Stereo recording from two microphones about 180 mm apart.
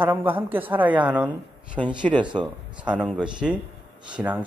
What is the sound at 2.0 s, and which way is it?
Speech, 25° right (ahead or behind).